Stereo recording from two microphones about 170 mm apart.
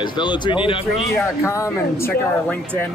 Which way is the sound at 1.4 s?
15° left (ahead or behind).